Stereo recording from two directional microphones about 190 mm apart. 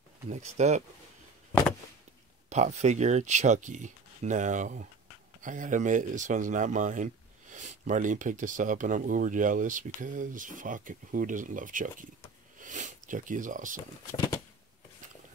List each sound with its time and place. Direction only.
0.3 s speech: 35° right (ahead or behind)
2.5 s speech: 35° right (ahead or behind)
14.1 s a sound: 20° left (ahead or behind)